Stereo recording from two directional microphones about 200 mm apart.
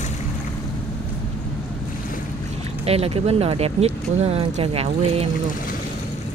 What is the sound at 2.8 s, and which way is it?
Speech, 30° right (ahead or behind).